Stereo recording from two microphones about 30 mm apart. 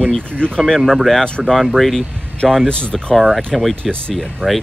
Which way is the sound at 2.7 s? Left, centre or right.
Left.